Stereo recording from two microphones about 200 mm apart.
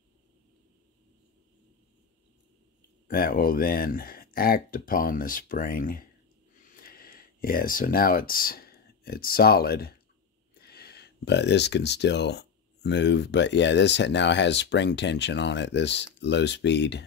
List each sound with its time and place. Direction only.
3.1 s speech: 45° left (ahead or behind)